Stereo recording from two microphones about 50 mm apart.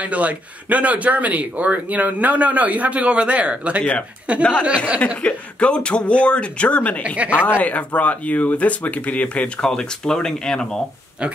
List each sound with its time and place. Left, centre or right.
0.0 s speech: right
4.4 s speech: left
4.6 s speech: right
5.2 s speech: left
7.2 s speech: right
7.6 s speech: left
9.6 s speech: centre